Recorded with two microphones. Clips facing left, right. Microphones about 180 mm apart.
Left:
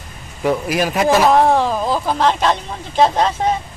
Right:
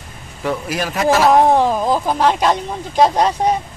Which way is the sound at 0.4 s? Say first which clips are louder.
Left 4 dB; 15° left (ahead or behind).